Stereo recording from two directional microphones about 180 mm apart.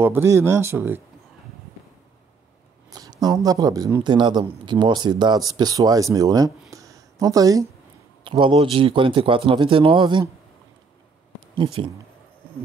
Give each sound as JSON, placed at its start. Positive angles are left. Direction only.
{"t": 0.0, "sound": "speech", "side_deg": -15}
{"t": 2.9, "sound": "speech", "side_deg": -20}
{"t": 6.7, "sound": "a sound", "side_deg": -20}
{"t": 8.2, "sound": "speech", "side_deg": -30}
{"t": 11.5, "sound": "speech", "side_deg": -30}